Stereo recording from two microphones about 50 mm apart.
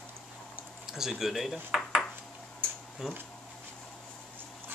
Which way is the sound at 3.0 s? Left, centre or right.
Centre.